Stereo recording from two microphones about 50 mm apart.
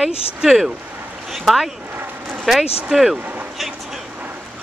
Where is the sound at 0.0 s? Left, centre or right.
Centre.